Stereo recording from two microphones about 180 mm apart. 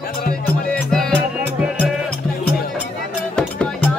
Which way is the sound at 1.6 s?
5° right (ahead or behind).